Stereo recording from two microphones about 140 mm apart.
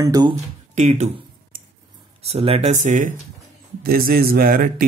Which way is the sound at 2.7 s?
65° right (ahead or behind).